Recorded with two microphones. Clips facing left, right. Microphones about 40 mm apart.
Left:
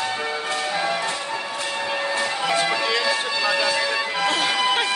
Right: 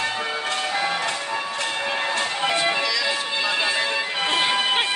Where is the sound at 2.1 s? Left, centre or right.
Right.